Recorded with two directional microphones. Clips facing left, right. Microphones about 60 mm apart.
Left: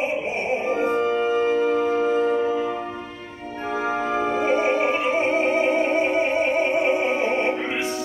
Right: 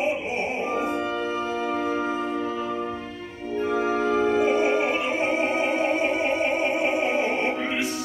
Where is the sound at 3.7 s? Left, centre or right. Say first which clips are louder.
Even; left.